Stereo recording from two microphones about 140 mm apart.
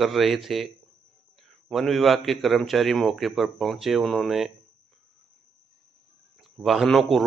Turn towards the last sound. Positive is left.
turn(degrees=0)  # may be behind; listen again after turning